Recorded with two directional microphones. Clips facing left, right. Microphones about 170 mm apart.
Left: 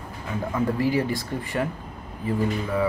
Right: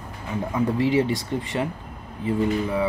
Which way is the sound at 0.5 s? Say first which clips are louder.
Right 2 dB; 25° right (ahead or behind).